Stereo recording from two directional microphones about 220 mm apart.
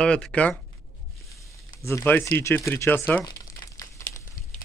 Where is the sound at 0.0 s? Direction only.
5° left (ahead or behind).